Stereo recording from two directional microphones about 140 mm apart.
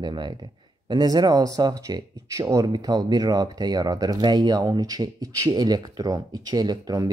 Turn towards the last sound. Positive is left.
turn(degrees=-25)  # may be behind; listen again after turning